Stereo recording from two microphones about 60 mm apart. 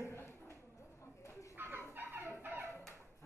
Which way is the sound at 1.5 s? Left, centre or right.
Right.